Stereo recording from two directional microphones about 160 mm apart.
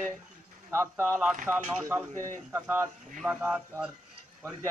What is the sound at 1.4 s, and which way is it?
Speech, 10° right (ahead or behind).